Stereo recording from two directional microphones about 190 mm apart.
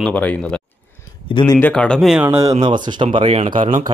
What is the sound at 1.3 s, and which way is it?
Speech, 25° left (ahead or behind).